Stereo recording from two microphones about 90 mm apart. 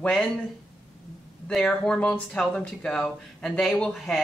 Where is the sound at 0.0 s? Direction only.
5° left (ahead or behind).